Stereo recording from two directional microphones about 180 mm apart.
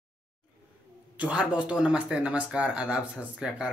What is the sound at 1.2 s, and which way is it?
A man's voice, 5° right (ahead or behind).